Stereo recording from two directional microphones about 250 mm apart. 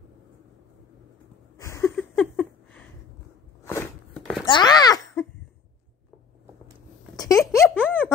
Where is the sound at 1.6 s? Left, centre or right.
Centre.